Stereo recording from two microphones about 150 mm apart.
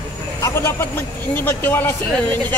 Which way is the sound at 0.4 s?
20° left (ahead or behind).